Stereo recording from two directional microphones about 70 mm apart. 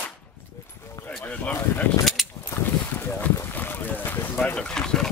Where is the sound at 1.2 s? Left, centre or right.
Centre.